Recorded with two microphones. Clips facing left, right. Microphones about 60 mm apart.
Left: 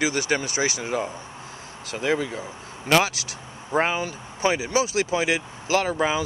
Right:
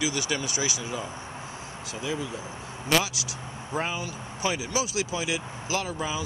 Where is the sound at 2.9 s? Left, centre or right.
Left.